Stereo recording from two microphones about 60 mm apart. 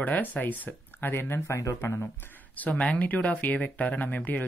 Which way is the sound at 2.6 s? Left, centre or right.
Left.